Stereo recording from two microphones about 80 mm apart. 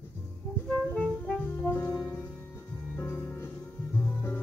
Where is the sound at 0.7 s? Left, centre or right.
Centre.